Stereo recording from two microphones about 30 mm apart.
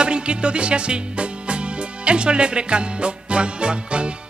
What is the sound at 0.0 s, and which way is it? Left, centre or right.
Music, right.